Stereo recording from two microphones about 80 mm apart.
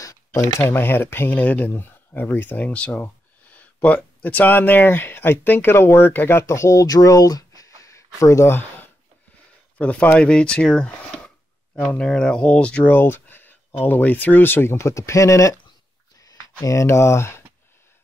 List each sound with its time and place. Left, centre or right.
0.0 s a sound: left
0.7 s speech: left
9.8 s speech: centre
12.9 s speech: left